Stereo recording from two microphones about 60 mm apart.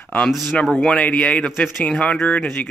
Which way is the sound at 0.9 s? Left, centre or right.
Left.